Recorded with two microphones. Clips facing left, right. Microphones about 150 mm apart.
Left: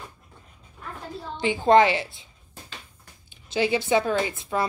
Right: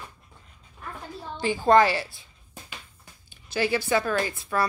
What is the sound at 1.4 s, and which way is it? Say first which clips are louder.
Speech: left 1 dB; 20° left (ahead or behind).